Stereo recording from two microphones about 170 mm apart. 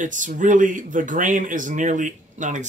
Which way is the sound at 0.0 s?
50° right (ahead or behind).